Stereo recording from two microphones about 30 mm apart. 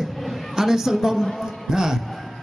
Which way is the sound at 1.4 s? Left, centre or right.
Centre.